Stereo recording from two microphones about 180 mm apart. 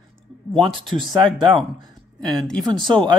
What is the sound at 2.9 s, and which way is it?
Speech, 25° right (ahead or behind).